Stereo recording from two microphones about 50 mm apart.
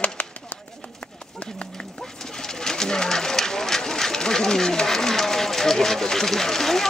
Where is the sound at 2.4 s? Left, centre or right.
Centre.